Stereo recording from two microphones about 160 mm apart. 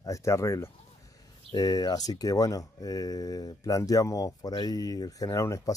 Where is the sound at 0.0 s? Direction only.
20° left (ahead or behind).